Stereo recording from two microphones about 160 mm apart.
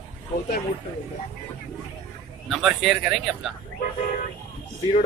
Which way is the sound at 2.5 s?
Centre (ahead or behind).